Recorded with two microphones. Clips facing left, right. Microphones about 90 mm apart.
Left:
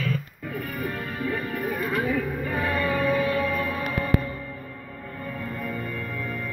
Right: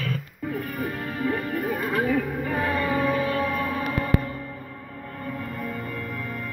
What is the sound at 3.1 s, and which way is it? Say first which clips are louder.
Music: left 1 dB; 30° right (ahead or behind).